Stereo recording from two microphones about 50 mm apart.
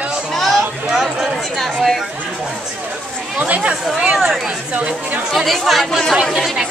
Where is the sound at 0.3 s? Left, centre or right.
Centre.